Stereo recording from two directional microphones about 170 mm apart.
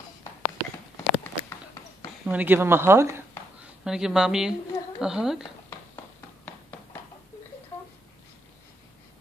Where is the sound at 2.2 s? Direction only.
10° right (ahead or behind).